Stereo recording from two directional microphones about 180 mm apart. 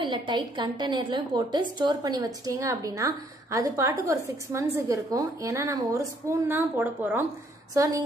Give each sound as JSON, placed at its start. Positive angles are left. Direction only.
{"t": 0.0, "sound": "a woman's voice", "side_deg": -25}